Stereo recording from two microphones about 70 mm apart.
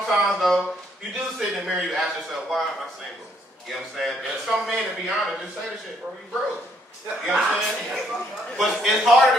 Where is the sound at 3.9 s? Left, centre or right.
Centre.